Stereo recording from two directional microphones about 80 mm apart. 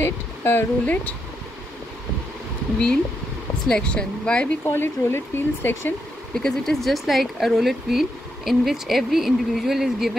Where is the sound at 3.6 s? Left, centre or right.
Centre.